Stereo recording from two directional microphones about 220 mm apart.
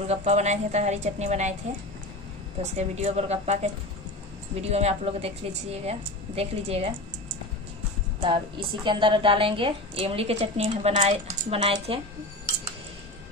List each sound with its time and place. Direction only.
0.1 s a woman's voice: 30° right (ahead or behind)
2.6 s a woman's voice: 30° right (ahead or behind)
8.2 s a woman's voice: 20° right (ahead or behind)